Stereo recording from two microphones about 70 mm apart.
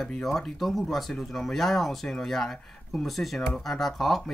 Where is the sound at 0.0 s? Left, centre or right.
Centre.